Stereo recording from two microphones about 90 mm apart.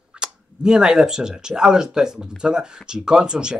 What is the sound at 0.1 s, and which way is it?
Speech, 10° right (ahead or behind).